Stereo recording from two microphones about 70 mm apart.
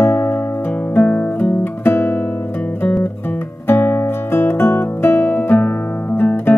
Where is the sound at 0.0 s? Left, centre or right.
Left.